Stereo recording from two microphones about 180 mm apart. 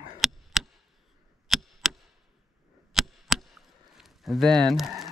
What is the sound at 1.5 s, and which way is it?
Chop, centre (ahead or behind).